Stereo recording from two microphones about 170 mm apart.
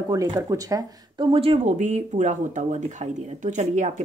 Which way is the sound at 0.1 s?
20° right (ahead or behind).